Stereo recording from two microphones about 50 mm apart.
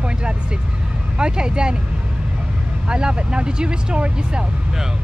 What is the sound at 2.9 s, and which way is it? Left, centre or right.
Speech, centre.